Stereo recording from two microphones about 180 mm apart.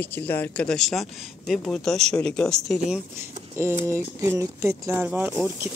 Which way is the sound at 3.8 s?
15° right (ahead or behind).